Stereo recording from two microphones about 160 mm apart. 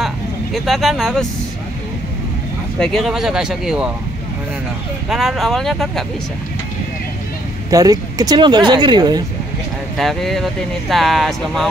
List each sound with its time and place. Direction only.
0.0 s vehicle: centre (ahead or behind)
2.8 s speech: centre (ahead or behind)
5.1 s speech: centre (ahead or behind)
7.7 s speech: 20° right (ahead or behind)
9.9 s speech: centre (ahead or behind)